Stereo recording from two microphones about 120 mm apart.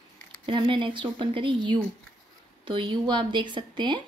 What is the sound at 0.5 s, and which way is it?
A woman's voice, 45° right (ahead or behind).